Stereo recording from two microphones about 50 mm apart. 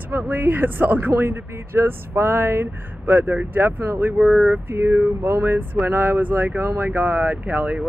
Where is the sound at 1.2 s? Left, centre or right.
Right.